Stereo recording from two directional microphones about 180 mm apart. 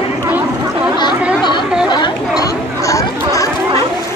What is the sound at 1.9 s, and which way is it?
Chatter, 20° left (ahead or behind).